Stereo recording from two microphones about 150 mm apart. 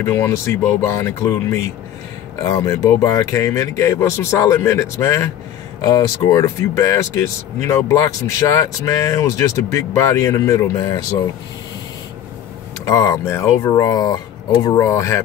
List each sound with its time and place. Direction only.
0.0 s speech: 20° left (ahead or behind)
12.8 s speech: 25° left (ahead or behind)